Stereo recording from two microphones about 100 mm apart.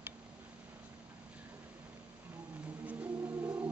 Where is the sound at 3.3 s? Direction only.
30° right (ahead or behind).